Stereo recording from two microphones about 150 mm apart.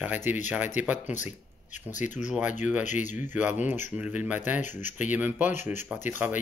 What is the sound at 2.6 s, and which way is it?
Speech, 10° right (ahead or behind).